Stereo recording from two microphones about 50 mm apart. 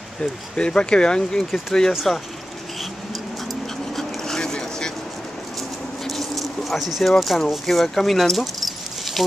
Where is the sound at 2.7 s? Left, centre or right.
Centre.